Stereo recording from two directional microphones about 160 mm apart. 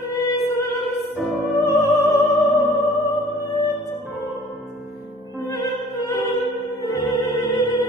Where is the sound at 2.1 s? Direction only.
Centre (ahead or behind).